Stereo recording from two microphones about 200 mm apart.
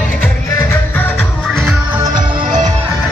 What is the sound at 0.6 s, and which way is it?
Music, 10° left (ahead or behind).